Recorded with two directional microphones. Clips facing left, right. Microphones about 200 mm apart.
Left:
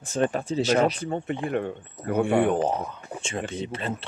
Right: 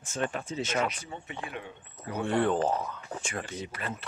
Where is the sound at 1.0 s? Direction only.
55° left (ahead or behind).